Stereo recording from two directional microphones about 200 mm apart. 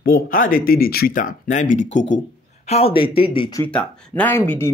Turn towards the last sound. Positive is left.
turn(degrees=10)  # may be behind; listen again after turning